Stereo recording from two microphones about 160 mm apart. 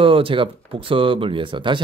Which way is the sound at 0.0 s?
35° right (ahead or behind).